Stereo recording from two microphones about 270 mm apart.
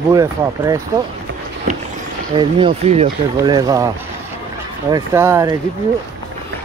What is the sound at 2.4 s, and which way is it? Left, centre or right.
Speech, centre.